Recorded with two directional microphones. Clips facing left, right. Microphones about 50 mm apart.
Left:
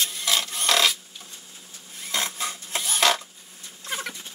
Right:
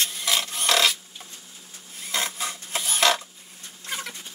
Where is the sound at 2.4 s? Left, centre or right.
Centre.